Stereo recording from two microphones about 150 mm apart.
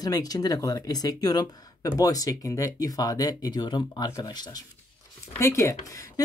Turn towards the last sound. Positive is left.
turn(degrees=20)  # may be behind; listen again after turning